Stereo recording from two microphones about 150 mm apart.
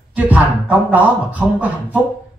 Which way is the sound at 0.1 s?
10° right (ahead or behind).